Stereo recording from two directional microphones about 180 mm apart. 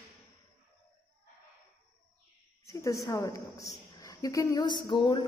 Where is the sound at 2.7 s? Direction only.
15° left (ahead or behind).